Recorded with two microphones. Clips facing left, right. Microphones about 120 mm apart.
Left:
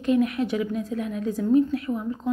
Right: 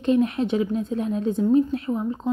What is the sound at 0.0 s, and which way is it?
A woman's voice, 30° right (ahead or behind).